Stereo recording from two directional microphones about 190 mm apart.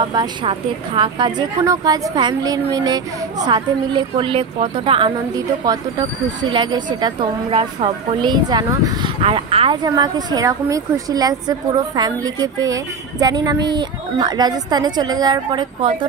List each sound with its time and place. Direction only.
0.1 s a woman's voice: 25° right (ahead or behind)